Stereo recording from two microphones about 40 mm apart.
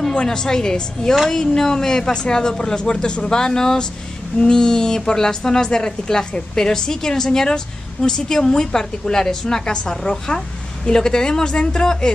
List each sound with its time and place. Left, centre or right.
0.1 s a woman's voice: centre